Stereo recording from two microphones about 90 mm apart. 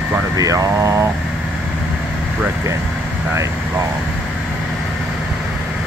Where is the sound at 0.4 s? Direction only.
40° right (ahead or behind).